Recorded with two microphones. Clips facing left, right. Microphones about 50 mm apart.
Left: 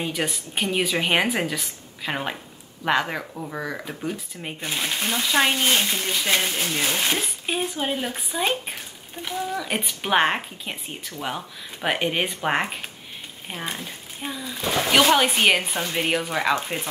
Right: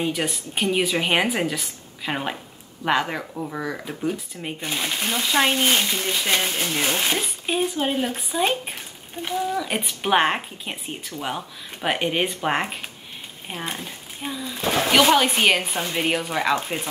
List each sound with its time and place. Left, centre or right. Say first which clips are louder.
0.0 s speech: right 2 dB; centre
14.6 s speech: right 2 dB; right
14.9 s speech: right 1 dB; centre